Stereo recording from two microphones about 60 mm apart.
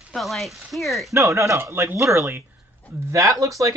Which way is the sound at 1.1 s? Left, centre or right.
Right.